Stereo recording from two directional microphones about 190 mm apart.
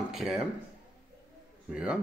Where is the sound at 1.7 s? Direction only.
5° right (ahead or behind).